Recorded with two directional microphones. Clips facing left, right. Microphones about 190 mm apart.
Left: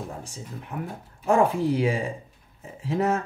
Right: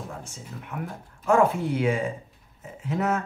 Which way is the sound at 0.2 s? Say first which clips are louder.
Left 2 dB; 35° left (ahead or behind).